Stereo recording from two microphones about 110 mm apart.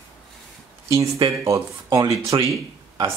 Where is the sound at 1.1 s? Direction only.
30° right (ahead or behind).